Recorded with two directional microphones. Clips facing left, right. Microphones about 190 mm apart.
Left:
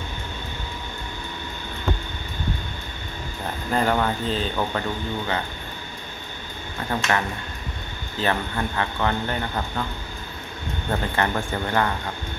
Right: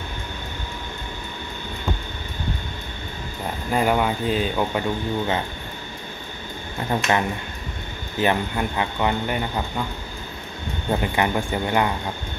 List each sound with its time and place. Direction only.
3.7 s speech: 10° right (ahead or behind)
6.9 s speech: 20° right (ahead or behind)
10.9 s speech: 15° right (ahead or behind)